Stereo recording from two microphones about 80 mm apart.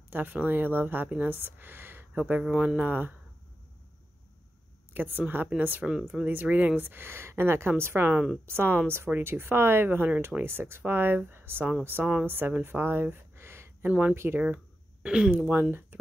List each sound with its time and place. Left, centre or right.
0.1 s speech: right
2.1 s speech: centre
2.7 s speech: right
4.9 s speech: right
13.8 s speech: centre
14.1 s speech: right
15.0 s speech: centre
15.9 s speech: right